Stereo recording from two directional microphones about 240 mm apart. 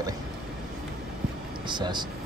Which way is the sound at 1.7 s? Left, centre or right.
Centre.